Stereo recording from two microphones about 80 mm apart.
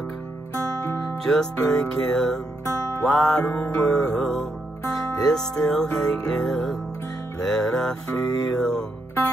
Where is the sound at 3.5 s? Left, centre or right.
Left.